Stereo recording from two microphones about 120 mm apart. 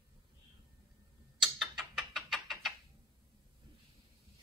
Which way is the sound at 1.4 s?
5° right (ahead or behind).